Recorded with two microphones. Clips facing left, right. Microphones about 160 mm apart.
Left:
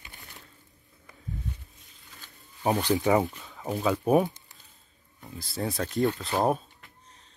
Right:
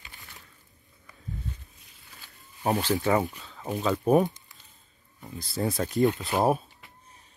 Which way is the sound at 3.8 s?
5° left (ahead or behind).